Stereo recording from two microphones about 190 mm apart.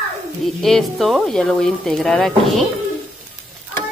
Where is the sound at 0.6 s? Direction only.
Centre (ahead or behind).